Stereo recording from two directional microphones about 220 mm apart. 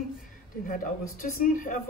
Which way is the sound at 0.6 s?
40° left (ahead or behind).